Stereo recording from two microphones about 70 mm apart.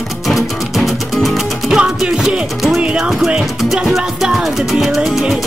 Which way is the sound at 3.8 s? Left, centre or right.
Centre.